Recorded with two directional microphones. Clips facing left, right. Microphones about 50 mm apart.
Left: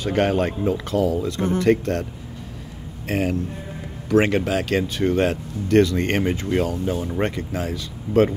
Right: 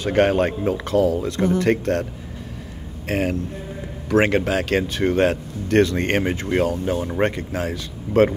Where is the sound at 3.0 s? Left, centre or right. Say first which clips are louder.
Even; right.